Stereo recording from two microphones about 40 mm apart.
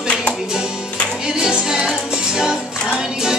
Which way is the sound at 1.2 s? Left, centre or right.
Centre.